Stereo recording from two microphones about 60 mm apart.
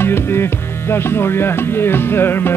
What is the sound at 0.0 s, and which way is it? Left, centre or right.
Music, left.